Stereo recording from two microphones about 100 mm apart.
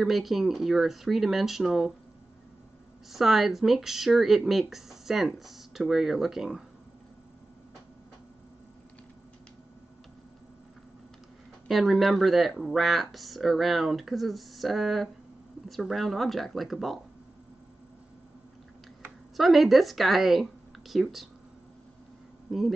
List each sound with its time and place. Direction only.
0.0 s speech: centre (ahead or behind)
3.1 s speech: centre (ahead or behind)
11.6 s speech: centre (ahead or behind)
19.3 s speech: centre (ahead or behind)
22.5 s speech: centre (ahead or behind)